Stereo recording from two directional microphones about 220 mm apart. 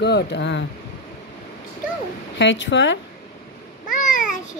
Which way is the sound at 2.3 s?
55° left (ahead or behind).